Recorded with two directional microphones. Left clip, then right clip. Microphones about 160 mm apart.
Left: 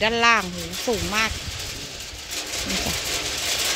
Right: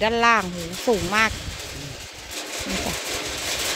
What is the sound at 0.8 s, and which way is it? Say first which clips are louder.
Speech: right 3 dB; 30° right (ahead or behind).